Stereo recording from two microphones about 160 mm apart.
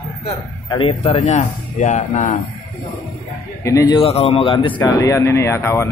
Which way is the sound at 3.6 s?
20° left (ahead or behind).